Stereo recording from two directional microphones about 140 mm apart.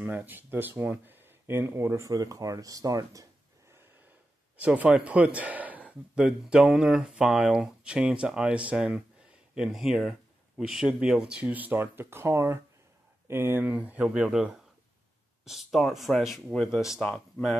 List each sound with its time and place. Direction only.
0.0 s speech: 15° right (ahead or behind)
4.6 s speech: 5° right (ahead or behind)